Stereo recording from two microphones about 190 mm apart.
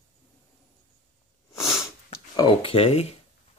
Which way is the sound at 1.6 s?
Centre (ahead or behind).